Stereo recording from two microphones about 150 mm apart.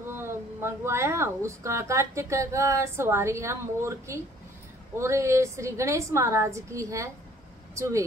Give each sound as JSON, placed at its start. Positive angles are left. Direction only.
{"t": 0.1, "sound": "speech", "side_deg": -15}